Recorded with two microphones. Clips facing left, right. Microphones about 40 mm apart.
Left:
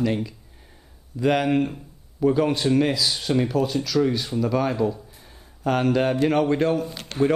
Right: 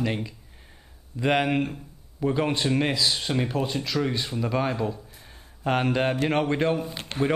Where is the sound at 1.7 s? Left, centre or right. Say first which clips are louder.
Left 1 dB; centre.